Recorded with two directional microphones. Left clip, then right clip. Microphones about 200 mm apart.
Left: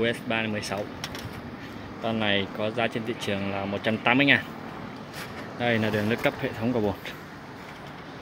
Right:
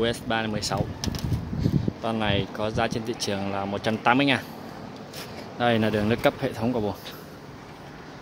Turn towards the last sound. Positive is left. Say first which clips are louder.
# even
turn(degrees=0)  # may be behind; listen again after turning